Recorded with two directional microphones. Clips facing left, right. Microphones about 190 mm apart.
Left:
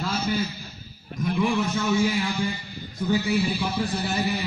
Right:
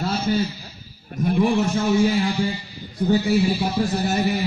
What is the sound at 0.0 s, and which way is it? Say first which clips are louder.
A man's voice: right 4 dB; 35° right (ahead or behind).